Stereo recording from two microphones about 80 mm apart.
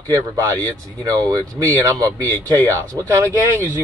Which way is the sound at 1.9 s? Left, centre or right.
Right.